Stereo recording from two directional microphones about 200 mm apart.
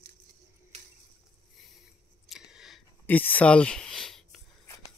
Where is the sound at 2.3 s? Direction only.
5° right (ahead or behind).